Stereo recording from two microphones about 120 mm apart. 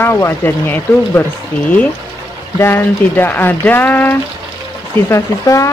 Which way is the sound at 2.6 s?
20° left (ahead or behind).